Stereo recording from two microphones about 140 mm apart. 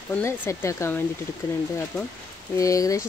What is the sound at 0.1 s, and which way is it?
Speech, 20° left (ahead or behind).